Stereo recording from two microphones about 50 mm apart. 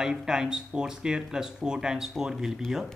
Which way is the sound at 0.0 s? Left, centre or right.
Centre.